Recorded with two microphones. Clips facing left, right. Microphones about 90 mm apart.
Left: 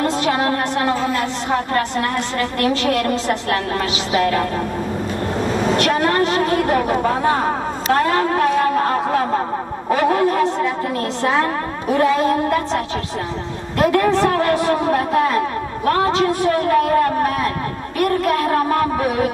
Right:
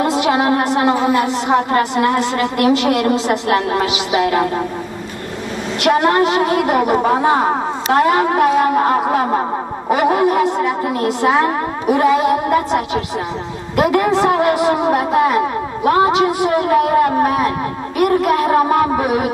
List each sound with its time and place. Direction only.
0.0 s a woman's voice: 15° right (ahead or behind)
5.8 s a woman's voice: 15° right (ahead or behind)